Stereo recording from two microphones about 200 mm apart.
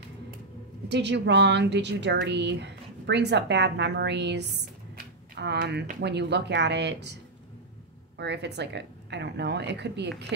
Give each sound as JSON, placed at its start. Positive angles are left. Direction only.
{"t": 0.8, "sound": "a woman's voice", "side_deg": -60}
{"t": 8.2, "sound": "a woman's voice", "side_deg": -60}